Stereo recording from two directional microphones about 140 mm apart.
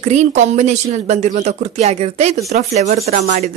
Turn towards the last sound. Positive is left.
turn(degrees=-60)  # may be behind; listen again after turning